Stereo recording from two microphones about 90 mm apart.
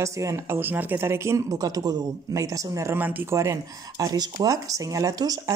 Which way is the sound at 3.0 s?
20° right (ahead or behind).